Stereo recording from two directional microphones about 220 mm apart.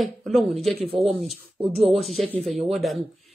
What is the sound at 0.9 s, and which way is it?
Speech, 25° right (ahead or behind).